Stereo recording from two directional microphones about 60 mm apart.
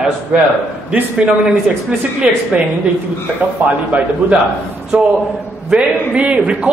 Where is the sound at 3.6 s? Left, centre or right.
Right.